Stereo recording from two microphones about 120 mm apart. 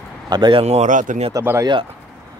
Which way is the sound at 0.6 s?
80° right.